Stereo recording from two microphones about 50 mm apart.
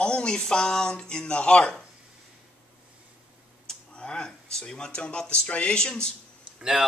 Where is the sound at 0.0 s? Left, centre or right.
Centre.